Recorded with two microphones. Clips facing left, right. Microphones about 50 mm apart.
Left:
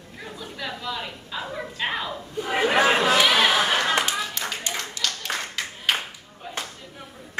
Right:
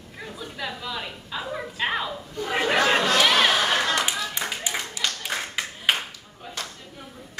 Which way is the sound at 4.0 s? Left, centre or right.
Centre.